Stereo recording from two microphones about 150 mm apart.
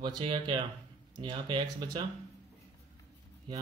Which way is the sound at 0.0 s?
30° right (ahead or behind).